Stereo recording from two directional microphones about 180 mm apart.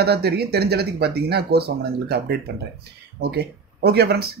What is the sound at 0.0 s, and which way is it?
Speech, 65° right (ahead or behind).